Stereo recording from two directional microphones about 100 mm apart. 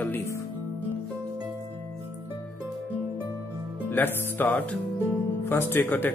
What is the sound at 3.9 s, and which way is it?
Speech, 20° left (ahead or behind).